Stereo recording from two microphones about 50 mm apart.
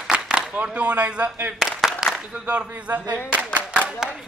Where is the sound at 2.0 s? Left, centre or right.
Centre.